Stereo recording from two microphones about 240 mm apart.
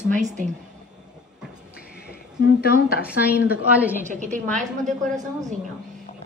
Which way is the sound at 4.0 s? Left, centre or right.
Right.